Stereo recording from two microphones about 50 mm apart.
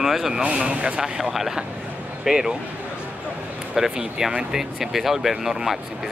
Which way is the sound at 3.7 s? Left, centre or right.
Centre.